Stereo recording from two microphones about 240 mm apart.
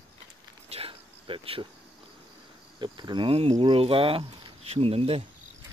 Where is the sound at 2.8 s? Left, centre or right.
Centre.